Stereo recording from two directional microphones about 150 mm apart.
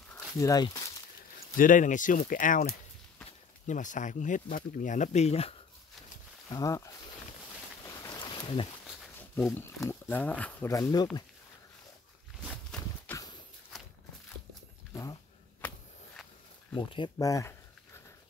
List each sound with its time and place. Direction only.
0.4 s speech: 25° left (ahead or behind)
1.6 s speech: 60° left (ahead or behind); by 5.6 s 40° left (ahead or behind)
6.5 s speech: 20° left (ahead or behind)
7.8 s a sound: 20° left (ahead or behind)
9.4 s speech: 15° left (ahead or behind)
10.7 s speech: 25° left (ahead or behind)
12.7 s clip-clop: 5° left (ahead or behind)
13.7 s walk: centre (ahead or behind)
14.9 s a sound: 20° left (ahead or behind)
16.9 s speech: 25° left (ahead or behind)